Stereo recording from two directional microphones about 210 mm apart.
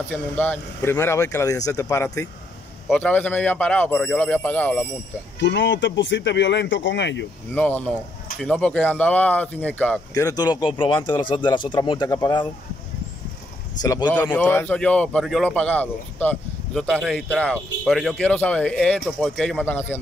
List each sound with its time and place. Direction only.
0.1 s a man's voice: 10° left (ahead or behind)
5.4 s speech: 60° left (ahead or behind)
7.5 s a man's voice: 5° left (ahead or behind)
13.8 s speech: 20° left (ahead or behind)
14.1 s a man's voice: 5° left (ahead or behind)